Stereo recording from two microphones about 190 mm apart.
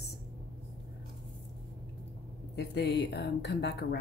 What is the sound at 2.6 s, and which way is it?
Speech, 65° left (ahead or behind).